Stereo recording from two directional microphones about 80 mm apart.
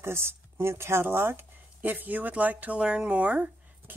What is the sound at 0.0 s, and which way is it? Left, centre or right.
A woman's voice, right.